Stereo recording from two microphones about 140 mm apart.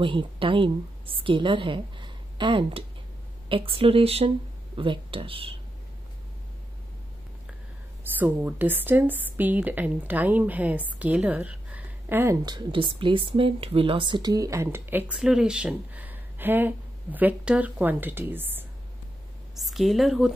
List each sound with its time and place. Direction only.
0.0 s a woman's voice: 40° right (ahead or behind)
8.2 s speech: 10° right (ahead or behind)
12.4 s speech: 35° right (ahead or behind); by 18.7 s 15° right (ahead or behind)
19.5 s a woman's voice: centre (ahead or behind)